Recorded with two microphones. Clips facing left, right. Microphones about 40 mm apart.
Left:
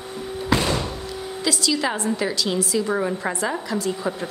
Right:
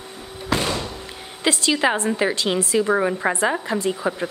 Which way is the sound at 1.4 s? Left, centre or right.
Right.